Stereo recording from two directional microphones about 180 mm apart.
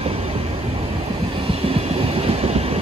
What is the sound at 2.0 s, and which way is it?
Train, 35° right (ahead or behind).